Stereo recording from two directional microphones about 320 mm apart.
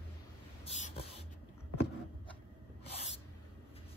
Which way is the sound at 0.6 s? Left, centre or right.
Centre.